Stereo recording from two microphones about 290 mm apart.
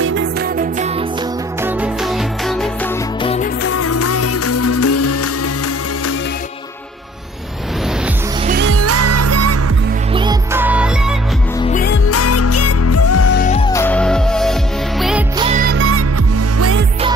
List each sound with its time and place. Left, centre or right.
0.0 s music: right
1.6 s music: centre
3.2 s music: centre
3.6 s music: left
8.5 s music: right
10.1 s music: centre
11.6 s music: left
12.1 s music: left
13.3 s music: left
13.6 s music: centre
15.3 s music: centre
15.6 s music: right